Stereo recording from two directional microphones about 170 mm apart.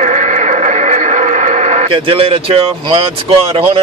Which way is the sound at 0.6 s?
45° right (ahead or behind).